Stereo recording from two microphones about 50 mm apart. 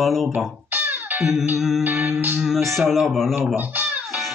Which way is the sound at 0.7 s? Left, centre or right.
Right.